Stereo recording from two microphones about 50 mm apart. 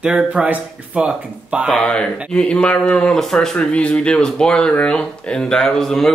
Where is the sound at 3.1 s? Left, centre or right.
Centre.